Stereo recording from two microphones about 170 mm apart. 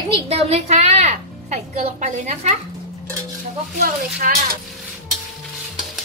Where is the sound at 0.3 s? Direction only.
35° right (ahead or behind).